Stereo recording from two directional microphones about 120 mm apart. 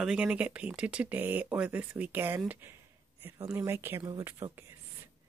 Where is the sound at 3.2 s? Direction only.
20° right (ahead or behind).